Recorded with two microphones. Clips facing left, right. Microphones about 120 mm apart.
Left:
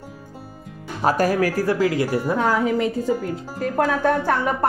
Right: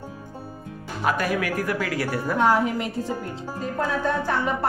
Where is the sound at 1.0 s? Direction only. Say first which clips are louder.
Left 5 dB; 40° left (ahead or behind); by 2.3 s 20° left (ahead or behind).